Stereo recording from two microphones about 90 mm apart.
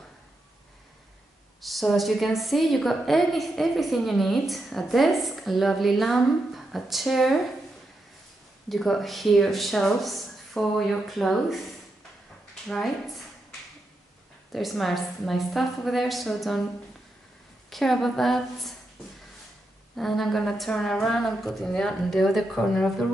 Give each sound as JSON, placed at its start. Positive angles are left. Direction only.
{"t": 1.6, "sound": "a woman's voice", "side_deg": 0}
{"t": 8.6, "sound": "a woman's voice", "side_deg": 0}
{"t": 12.6, "sound": "a woman's voice", "side_deg": 5}
{"t": 14.5, "sound": "a woman's voice", "side_deg": 0}
{"t": 17.6, "sound": "a woman's voice", "side_deg": 5}
{"t": 20.0, "sound": "a woman's voice", "side_deg": 0}